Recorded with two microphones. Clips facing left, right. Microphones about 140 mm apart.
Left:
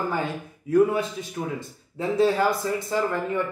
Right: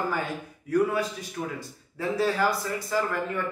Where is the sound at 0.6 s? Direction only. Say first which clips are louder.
Left 4 dB; 25° left (ahead or behind).